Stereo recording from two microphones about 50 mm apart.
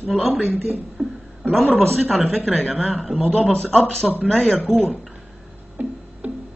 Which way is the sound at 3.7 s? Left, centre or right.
Centre.